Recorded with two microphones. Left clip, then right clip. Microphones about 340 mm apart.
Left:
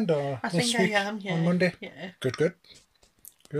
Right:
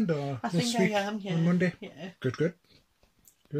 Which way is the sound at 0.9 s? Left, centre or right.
Centre.